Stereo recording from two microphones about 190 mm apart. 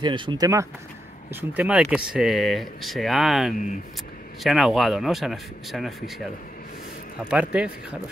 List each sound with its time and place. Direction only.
0.0 s speech: 25° right (ahead or behind)
1.3 s speech: 5° right (ahead or behind)
7.2 s speech: 5° right (ahead or behind)